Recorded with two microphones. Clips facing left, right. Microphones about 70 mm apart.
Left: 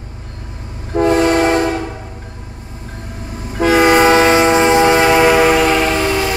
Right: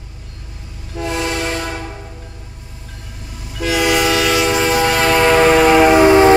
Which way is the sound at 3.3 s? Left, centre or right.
Left.